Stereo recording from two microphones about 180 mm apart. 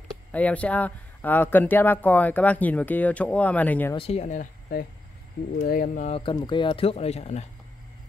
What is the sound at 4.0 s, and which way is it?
Speech, 35° left (ahead or behind).